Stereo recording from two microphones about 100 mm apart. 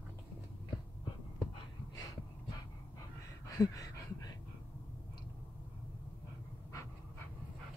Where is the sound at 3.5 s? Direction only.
35° left (ahead or behind).